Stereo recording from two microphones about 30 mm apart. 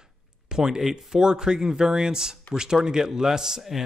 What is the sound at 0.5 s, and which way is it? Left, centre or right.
Speech, centre.